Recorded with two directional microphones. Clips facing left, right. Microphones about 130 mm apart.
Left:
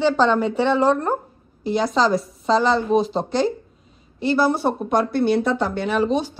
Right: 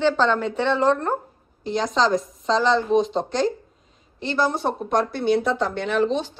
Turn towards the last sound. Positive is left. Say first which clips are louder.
# left 1 dB
turn(degrees=10)  # may be behind; listen again after turning